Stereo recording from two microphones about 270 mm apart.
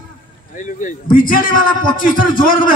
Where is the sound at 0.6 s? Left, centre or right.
Left.